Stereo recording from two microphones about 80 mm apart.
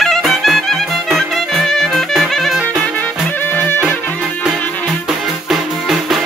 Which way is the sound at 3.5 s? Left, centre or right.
Left.